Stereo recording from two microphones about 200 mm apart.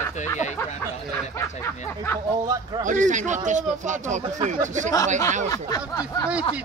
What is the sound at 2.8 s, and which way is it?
A man's voice, 40° right (ahead or behind).